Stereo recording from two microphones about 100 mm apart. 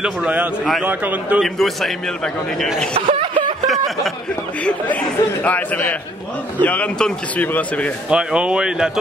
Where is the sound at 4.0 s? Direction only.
10° left (ahead or behind).